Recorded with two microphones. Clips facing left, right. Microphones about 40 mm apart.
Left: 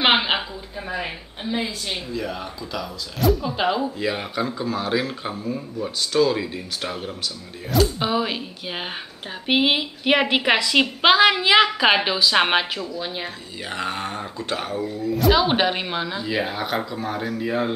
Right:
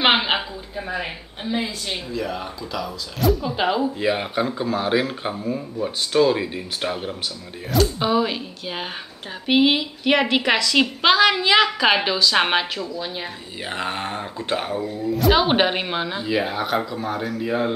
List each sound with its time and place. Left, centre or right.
0.0 s a woman's voice: centre
4.0 s speech: centre
7.7 s a woman's voice: centre
13.7 s speech: centre
15.1 s speech: centre
15.4 s speech: centre
16.3 s speech: centre